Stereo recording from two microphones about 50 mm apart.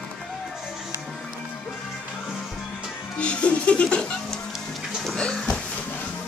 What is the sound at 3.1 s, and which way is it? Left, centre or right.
Music, left.